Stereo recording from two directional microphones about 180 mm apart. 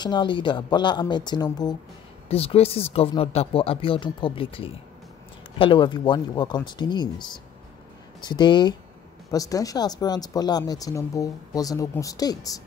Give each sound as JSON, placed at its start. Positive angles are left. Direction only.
{"t": 0.0, "sound": "speech", "side_deg": 25}
{"t": 2.2, "sound": "speech", "side_deg": 35}